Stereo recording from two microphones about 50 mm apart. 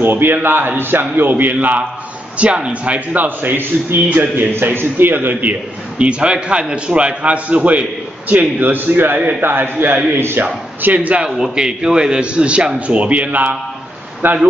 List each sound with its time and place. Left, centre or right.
0.0 s a man's voice: right
10.4 s a man's voice: right
11.5 s a man's voice: centre
14.2 s a man's voice: right